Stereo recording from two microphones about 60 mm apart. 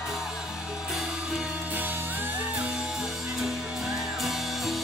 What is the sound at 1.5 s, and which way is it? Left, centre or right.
Music, right.